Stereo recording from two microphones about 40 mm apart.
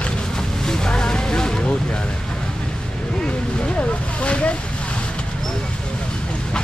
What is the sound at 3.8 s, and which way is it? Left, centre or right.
Speech, left.